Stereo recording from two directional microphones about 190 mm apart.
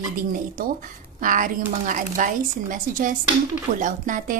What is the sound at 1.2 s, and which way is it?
Speech, 45° right (ahead or behind).